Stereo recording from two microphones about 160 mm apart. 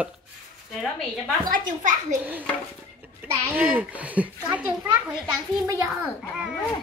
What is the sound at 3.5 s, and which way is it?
A child's voice, 10° right (ahead or behind).